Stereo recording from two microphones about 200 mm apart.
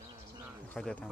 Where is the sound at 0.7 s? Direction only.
5° left (ahead or behind).